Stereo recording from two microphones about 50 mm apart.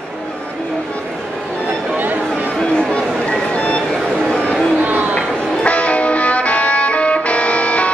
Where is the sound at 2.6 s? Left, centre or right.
Centre.